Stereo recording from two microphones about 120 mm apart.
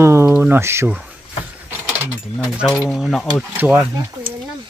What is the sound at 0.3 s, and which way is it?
Speech, 15° right (ahead or behind).